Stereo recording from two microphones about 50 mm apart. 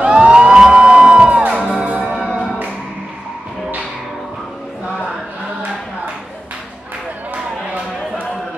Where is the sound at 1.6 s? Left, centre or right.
Centre.